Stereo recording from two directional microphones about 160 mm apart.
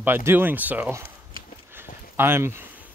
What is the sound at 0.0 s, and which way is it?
Speech, 15° right (ahead or behind).